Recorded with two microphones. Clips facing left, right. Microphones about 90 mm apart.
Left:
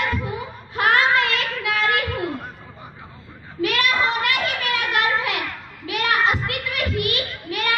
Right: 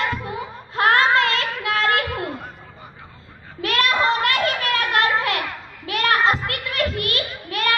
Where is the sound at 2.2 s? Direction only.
Centre (ahead or behind).